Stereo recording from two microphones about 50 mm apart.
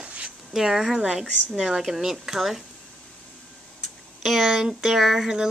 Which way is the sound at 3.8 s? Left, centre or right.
Centre.